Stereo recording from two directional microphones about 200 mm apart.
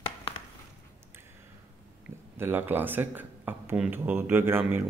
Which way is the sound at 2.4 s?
10° right (ahead or behind).